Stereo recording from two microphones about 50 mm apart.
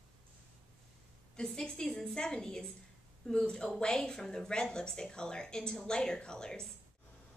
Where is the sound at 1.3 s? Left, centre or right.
Centre.